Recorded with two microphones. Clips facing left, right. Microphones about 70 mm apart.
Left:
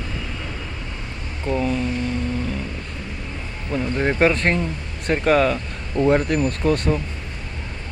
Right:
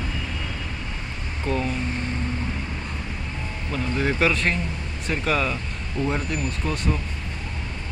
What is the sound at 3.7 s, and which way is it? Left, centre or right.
Speech, left.